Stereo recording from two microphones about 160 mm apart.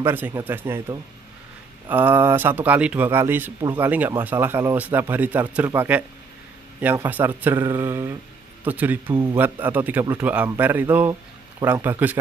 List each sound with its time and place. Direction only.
0.0 s speech: 15° right (ahead or behind)
9.1 s a man's voice: 25° right (ahead or behind)
9.4 s speech: 10° right (ahead or behind)